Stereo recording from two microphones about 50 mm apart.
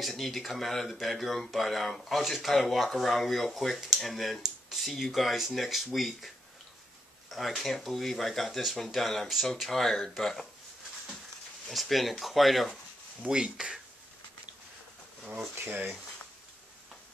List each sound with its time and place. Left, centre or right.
0.0 s speech: centre
11.6 s speech: centre
13.3 s speech: centre
15.7 s speech: right